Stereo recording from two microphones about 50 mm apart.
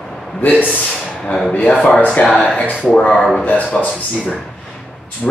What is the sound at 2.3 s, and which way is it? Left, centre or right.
Speech, centre.